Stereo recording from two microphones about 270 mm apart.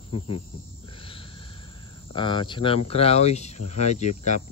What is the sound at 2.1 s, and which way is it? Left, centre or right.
Speech, centre.